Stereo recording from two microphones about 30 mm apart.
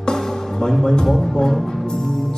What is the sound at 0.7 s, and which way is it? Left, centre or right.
Music, centre.